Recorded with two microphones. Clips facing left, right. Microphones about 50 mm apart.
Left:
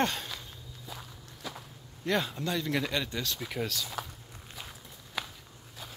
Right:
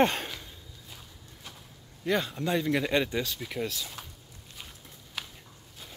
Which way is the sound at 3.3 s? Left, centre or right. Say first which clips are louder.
Right 1 dB; centre.